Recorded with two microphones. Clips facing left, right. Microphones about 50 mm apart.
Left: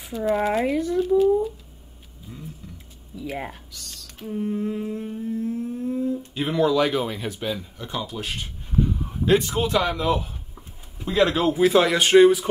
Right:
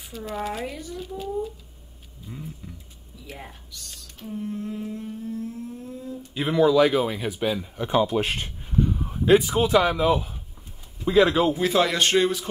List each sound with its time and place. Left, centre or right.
0.1 s speech: centre
0.7 s speech: left
3.3 s speech: left
4.2 s humming: centre; by 6.1 s left
6.3 s speech: centre
7.8 s speech: right
8.7 s speech: centre